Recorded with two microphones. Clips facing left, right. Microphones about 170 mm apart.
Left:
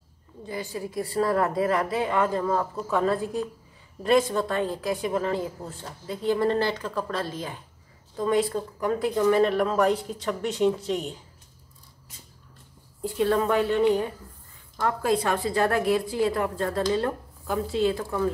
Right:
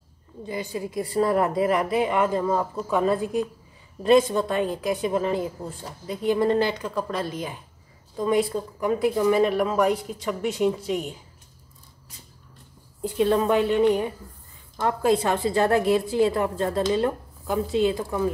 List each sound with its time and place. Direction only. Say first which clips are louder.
0.5 s a woman's voice: right 2 dB; 20° right (ahead or behind)
13.0 s a woman's voice: right 2 dB; 20° right (ahead or behind)